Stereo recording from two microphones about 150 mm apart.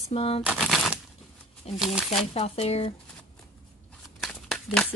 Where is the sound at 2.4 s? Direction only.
45° left (ahead or behind).